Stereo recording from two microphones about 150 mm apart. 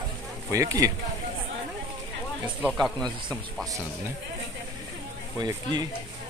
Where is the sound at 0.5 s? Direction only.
20° right (ahead or behind).